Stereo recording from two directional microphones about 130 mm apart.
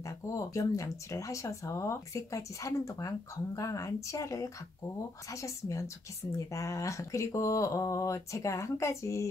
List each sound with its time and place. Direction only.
0.0 s speech: 25° left (ahead or behind)